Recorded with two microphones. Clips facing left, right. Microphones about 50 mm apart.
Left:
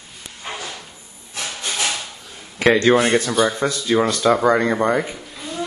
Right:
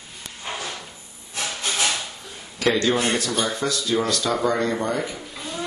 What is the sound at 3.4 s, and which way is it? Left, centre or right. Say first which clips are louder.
Speech: left 5 dB; left.